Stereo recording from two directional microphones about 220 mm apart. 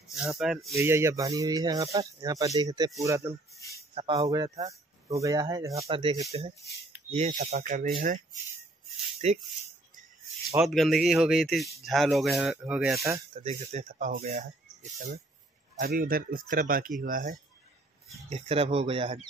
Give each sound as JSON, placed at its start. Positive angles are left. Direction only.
{"t": 0.1, "sound": "speech", "side_deg": 0}
{"t": 0.7, "sound": "speech", "side_deg": -10}
{"t": 9.2, "sound": "speech", "side_deg": -30}
{"t": 10.6, "sound": "speech", "side_deg": 0}
{"t": 13.3, "sound": "speech", "side_deg": -30}
{"t": 18.3, "sound": "speech", "side_deg": -25}